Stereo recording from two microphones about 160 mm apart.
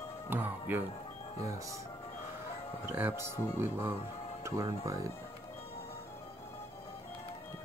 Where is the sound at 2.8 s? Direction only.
15° right (ahead or behind).